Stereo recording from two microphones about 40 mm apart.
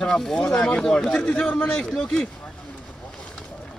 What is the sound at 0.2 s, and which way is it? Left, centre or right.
A man's voice, centre.